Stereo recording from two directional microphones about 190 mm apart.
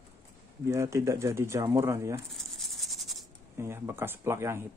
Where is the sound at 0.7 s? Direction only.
15° right (ahead or behind).